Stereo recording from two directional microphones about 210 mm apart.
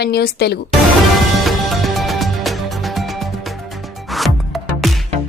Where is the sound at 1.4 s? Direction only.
Centre (ahead or behind).